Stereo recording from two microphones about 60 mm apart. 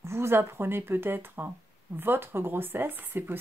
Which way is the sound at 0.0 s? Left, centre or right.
Right.